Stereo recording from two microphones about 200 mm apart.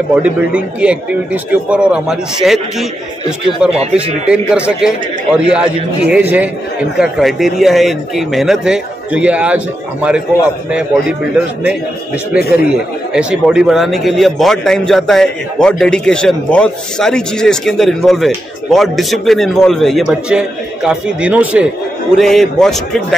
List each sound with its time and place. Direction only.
0.1 s a man's voice: 5° right (ahead or behind)
3.9 s a man's voice: 5° right (ahead or behind)
12.4 s speech: 50° left (ahead or behind)
13.1 s a man's voice: 5° right (ahead or behind)